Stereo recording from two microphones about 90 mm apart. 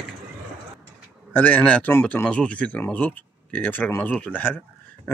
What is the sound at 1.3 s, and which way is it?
Speech, 20° left (ahead or behind).